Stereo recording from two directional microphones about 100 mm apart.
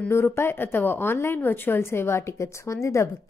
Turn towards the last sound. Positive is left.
turn(degrees=30)  # may be behind; listen again after turning